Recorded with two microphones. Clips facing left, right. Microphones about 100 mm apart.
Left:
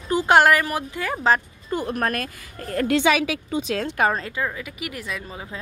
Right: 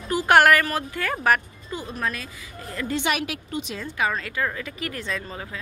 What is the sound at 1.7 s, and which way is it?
A woman's voice, 55° left (ahead or behind).